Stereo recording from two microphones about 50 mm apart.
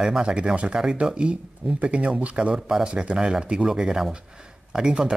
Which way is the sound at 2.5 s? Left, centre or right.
Centre.